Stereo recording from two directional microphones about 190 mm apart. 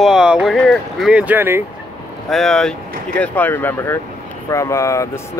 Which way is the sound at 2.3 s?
5° left (ahead or behind).